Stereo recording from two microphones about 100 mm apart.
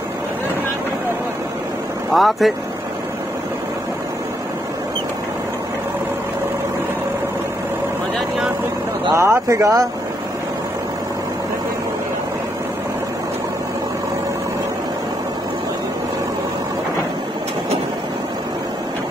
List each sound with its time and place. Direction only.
2.1 s speech: centre (ahead or behind)
9.1 s speech: 30° right (ahead or behind)